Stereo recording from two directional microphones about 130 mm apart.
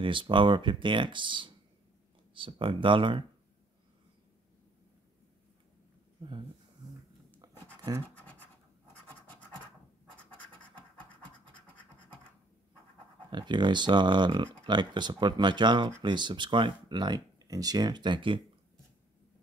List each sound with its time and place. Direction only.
0.0 s speech: 40° right (ahead or behind)
7.4 s writing: 30° right (ahead or behind)
8.1 s scratch: 10° left (ahead or behind)
10.6 s scratch: 10° left (ahead or behind)
13.3 s speech: 35° right (ahead or behind)